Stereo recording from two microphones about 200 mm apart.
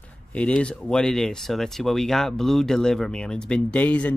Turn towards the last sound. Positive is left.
turn(degrees=5)  # may be behind; listen again after turning